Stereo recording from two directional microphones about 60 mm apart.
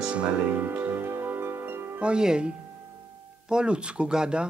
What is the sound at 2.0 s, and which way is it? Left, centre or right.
Speech, centre.